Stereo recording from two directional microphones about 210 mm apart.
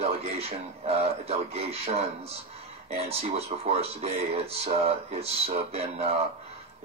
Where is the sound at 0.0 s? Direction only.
30° right (ahead or behind).